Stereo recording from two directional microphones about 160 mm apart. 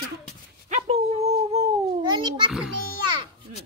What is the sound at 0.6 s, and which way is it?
Speech, 45° right (ahead or behind).